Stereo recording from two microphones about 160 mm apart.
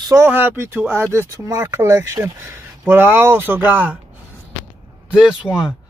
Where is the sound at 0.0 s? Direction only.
15° right (ahead or behind).